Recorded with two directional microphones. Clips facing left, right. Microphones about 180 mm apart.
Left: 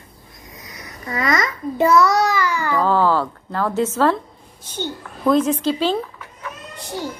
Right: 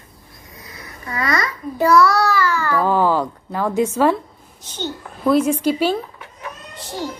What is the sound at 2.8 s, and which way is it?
A woman's voice, 15° right (ahead or behind).